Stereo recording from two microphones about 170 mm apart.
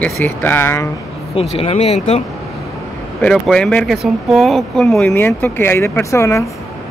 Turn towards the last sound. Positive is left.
turn(degrees=15)  # may be behind; listen again after turning